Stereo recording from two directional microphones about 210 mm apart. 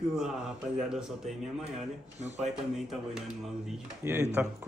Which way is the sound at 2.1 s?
30° right (ahead or behind).